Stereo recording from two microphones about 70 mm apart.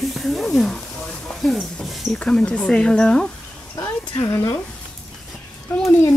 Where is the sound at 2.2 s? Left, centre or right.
Centre.